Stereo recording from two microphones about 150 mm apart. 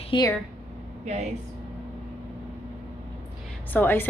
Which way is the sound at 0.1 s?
35° left (ahead or behind).